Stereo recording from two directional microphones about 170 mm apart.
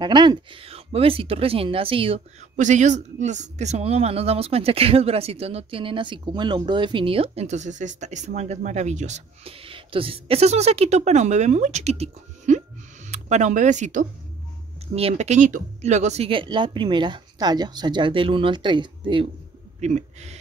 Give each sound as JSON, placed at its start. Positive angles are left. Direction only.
{"t": 0.0, "sound": "speech", "side_deg": -25}
{"t": 2.5, "sound": "speech", "side_deg": -45}
{"t": 19.8, "sound": "speech", "side_deg": -45}